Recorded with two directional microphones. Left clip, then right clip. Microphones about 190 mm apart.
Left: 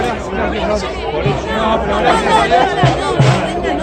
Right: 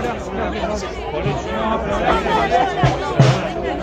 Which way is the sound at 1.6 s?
55° left (ahead or behind).